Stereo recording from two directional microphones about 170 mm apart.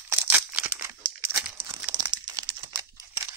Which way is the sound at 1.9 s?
25° right (ahead or behind).